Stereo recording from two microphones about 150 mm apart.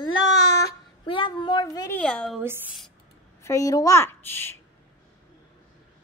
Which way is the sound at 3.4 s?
20° left (ahead or behind).